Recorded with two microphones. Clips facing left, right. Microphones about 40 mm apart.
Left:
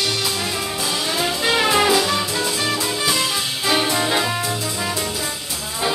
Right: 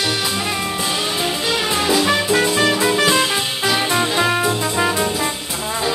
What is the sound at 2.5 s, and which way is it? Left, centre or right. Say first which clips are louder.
Music: right 6 dB; right.